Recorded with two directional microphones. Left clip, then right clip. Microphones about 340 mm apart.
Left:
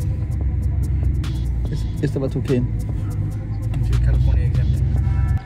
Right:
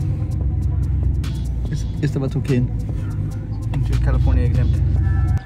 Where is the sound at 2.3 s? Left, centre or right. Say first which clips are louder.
Left 1 dB; centre.